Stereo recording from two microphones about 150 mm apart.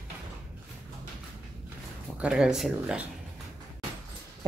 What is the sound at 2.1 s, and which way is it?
Speech, 5° right (ahead or behind).